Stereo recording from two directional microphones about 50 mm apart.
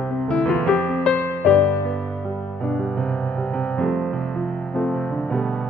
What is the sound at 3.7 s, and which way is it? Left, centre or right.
Music, centre.